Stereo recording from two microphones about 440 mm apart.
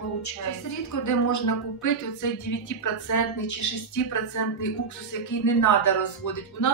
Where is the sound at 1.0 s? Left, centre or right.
Left.